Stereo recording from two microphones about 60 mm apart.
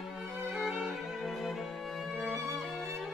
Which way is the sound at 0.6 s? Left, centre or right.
Centre.